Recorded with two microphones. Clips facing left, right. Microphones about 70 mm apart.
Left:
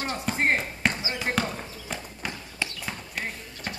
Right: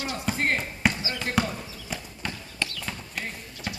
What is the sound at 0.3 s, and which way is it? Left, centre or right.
Basketball bounce, centre.